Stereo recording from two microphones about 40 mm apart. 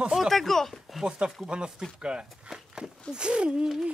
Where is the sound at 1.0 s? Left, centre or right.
Right.